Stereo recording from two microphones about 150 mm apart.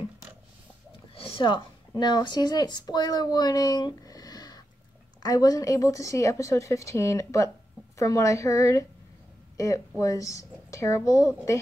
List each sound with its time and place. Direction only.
1.1 s speech: 35° left (ahead or behind); by 11.5 s 20° left (ahead or behind)